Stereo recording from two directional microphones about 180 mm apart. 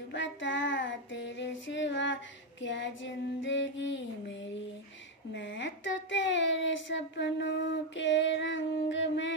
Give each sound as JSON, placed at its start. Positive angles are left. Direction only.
{"t": 0.1, "sound": "child singing", "side_deg": 90}
{"t": 5.3, "sound": "speech", "side_deg": 85}